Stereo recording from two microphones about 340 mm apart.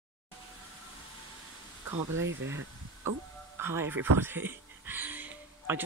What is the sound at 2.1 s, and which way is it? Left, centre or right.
Speech, right.